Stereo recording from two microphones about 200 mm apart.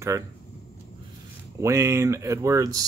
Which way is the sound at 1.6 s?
15° right (ahead or behind).